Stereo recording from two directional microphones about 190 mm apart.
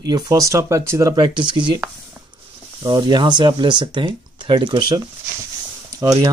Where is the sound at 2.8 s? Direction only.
20° right (ahead or behind).